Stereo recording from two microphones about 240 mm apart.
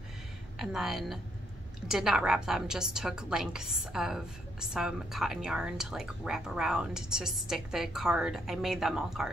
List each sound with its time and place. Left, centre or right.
0.6 s a woman's voice: centre